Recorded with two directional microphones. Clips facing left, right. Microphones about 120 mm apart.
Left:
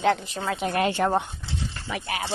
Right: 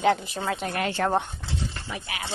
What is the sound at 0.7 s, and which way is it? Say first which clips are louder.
Speech: left 4 dB; 25° left (ahead or behind).